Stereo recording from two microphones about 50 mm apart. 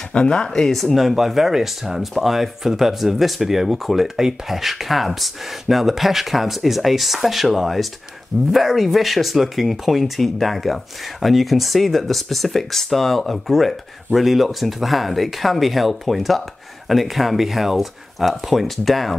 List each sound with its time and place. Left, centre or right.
0.1 s speech: centre
0.5 s speech: centre
0.9 s speech: centre